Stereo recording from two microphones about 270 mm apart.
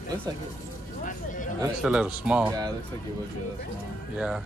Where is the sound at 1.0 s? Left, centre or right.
Left.